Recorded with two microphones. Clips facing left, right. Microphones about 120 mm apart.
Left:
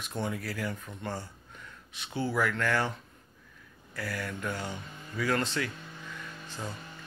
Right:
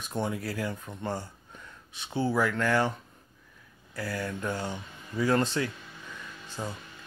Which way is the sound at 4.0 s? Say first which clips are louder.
Right 3 dB; 25° right (ahead or behind).